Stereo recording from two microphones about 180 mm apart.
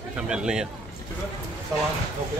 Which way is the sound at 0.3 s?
5° right (ahead or behind).